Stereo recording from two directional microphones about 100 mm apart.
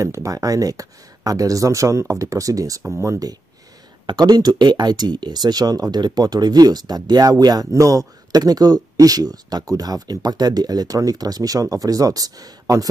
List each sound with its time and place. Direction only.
0.0 s speech: 30° right (ahead or behind)
2.8 s speech: 25° right (ahead or behind)
4.0 s speech: 45° right (ahead or behind)